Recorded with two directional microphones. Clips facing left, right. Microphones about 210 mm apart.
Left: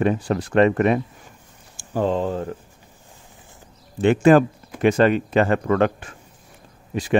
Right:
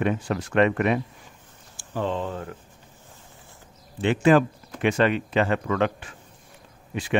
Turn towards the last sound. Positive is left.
turn(degrees=40)  # may be behind; listen again after turning